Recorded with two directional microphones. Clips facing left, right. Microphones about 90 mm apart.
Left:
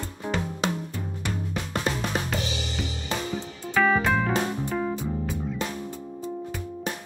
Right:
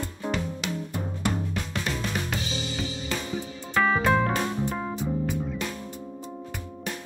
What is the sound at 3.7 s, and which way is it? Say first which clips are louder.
Music: even; 5° right (ahead or behind).